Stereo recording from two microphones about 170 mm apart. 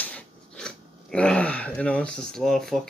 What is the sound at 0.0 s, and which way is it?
Speech, 5° left (ahead or behind).